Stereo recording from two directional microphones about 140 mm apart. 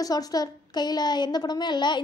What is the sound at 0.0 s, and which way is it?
A woman's voice, 25° left (ahead or behind).